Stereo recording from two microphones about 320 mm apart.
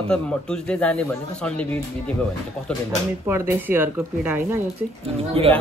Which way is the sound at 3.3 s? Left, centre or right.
Centre.